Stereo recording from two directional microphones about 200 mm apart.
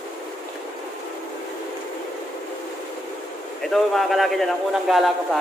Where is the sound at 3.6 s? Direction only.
Centre (ahead or behind).